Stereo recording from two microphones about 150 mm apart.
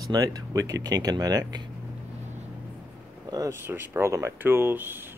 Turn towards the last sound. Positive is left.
turn(degrees=-15)  # may be behind; listen again after turning